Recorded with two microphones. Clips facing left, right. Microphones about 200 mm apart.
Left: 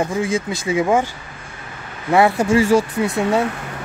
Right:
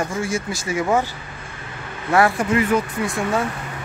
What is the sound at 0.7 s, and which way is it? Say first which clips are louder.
Speech: left 3 dB; 15° left (ahead or behind).